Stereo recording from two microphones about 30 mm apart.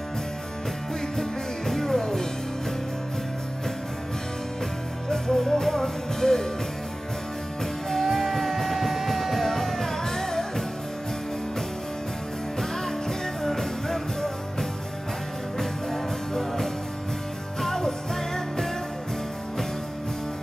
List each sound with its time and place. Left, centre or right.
1.7 s music: centre
5.1 s music: centre
7.9 s music: centre
13.4 s music: centre
15.9 s music: centre